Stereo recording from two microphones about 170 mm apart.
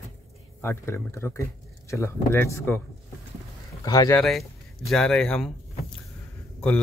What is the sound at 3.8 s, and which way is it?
Speech, 20° left (ahead or behind).